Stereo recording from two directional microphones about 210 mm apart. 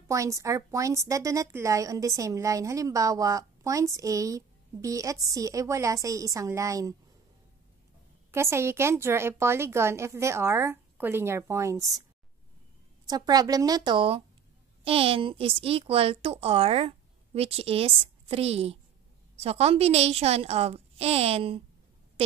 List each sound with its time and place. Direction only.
0.1 s a woman's voice: 15° right (ahead or behind)
8.3 s a woman's voice: 10° right (ahead or behind)
13.0 s a woman's voice: 20° right (ahead or behind)